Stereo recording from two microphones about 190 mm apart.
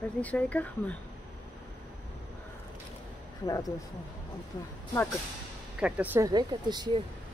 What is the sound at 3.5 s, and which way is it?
Speech, 20° left (ahead or behind).